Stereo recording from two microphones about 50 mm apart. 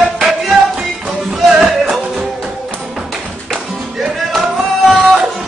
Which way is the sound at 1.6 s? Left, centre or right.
Centre.